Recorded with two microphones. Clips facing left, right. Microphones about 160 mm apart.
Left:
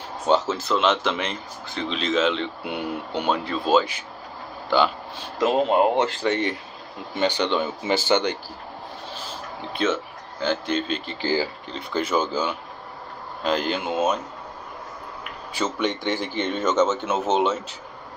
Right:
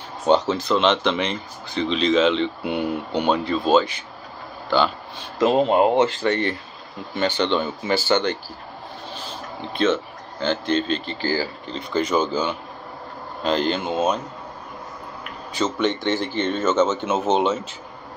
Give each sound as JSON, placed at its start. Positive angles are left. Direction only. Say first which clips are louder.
{"t": 0.3, "sound": "speech", "louder": "right 3 dB", "side_deg": 5}
{"t": 6.2, "sound": "speech", "louder": "right 2 dB", "side_deg": 15}
{"t": 9.7, "sound": "speech", "louder": "right 3 dB", "side_deg": 10}
{"t": 15.5, "sound": "speech", "louder": "right 3 dB", "side_deg": 10}